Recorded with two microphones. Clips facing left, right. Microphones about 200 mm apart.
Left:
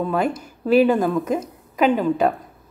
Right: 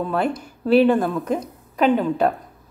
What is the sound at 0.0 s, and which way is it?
A woman's voice, 5° left (ahead or behind).